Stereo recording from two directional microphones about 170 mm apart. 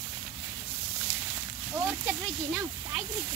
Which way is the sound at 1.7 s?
10° right (ahead or behind).